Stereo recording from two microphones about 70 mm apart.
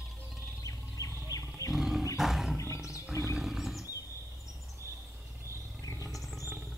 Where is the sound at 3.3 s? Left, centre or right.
Centre.